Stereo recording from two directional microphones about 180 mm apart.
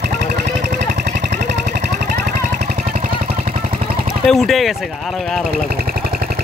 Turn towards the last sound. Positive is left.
turn(degrees=0)  # may be behind; listen again after turning